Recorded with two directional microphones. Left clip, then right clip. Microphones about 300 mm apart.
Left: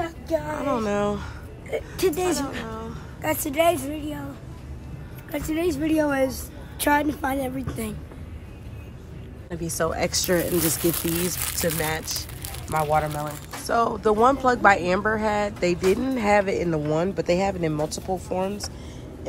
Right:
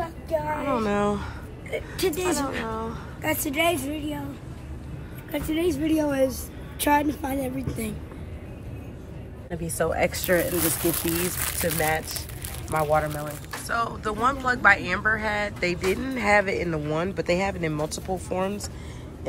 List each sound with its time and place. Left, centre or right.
0.6 s speech: centre
1.7 s speech: left
2.2 s speech: centre
5.3 s speech: centre
9.5 s speech: centre
12.7 s speech: centre
13.7 s speech: centre